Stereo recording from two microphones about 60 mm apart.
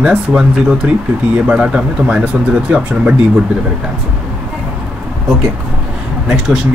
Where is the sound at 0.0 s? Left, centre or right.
Centre.